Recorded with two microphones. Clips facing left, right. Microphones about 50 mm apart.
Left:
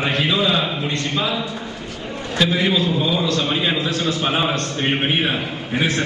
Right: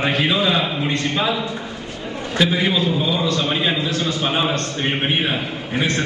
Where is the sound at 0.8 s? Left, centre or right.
Centre.